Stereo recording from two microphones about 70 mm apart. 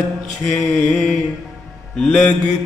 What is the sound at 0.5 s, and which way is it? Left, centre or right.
Mantra, left.